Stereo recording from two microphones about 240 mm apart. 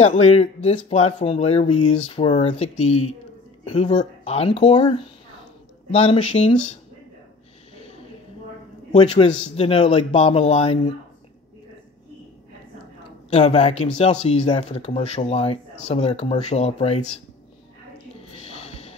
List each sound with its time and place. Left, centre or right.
0.0 s speech: left
8.9 s speech: left
13.3 s speech: left
18.4 s music: left